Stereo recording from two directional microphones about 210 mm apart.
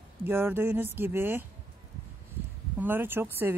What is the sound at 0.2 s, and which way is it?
Speech, 10° right (ahead or behind).